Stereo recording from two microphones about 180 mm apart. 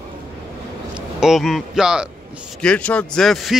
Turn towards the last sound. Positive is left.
turn(degrees=0)  # may be behind; listen again after turning